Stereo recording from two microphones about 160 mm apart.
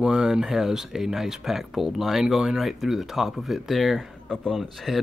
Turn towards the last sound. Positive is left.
turn(degrees=0)  # may be behind; listen again after turning